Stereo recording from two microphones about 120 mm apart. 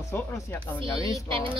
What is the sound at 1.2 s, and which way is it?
Speech, 45° right (ahead or behind).